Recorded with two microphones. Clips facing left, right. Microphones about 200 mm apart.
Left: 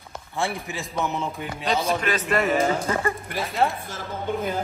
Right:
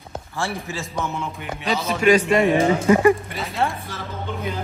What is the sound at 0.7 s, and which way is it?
Speech, 15° left (ahead or behind).